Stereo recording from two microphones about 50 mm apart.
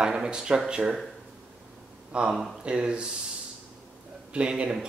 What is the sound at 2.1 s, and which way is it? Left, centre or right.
Speech, right.